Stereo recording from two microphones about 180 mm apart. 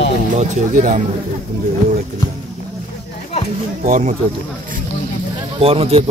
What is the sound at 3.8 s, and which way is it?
Speech, 50° right (ahead or behind).